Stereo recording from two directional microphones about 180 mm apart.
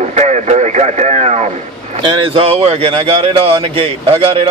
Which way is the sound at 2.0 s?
30° right (ahead or behind).